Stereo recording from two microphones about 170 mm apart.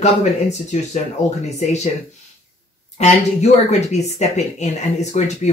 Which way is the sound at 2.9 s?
40° left (ahead or behind).